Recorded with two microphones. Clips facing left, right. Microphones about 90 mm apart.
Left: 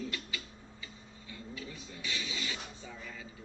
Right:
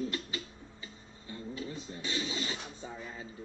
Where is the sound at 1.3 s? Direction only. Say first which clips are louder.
Right 5 dB; 35° right (ahead or behind).